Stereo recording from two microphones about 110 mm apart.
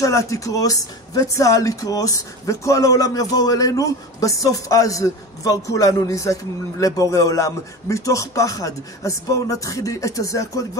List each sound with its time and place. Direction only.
0.0 s speech: 30° left (ahead or behind)